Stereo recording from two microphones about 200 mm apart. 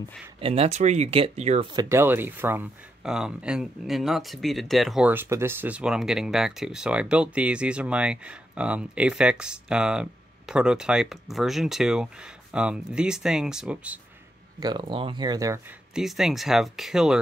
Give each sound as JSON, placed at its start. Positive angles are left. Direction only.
{"t": 0.4, "sound": "speech", "side_deg": -30}
{"t": 1.7, "sound": "speech", "side_deg": -15}
{"t": 14.6, "sound": "speech", "side_deg": -25}
{"t": 15.9, "sound": "speech", "side_deg": 0}